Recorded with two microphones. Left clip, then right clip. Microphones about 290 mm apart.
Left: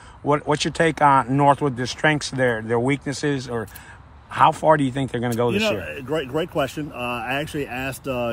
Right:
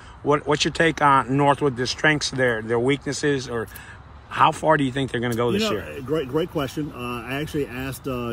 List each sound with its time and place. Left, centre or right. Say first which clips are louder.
0.3 s speech: even; left
6.0 s speech: right 1 dB; centre